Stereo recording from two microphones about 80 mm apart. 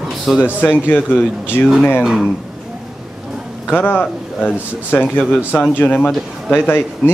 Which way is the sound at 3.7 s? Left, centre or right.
Left.